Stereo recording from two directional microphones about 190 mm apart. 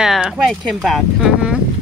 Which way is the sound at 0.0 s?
Centre (ahead or behind).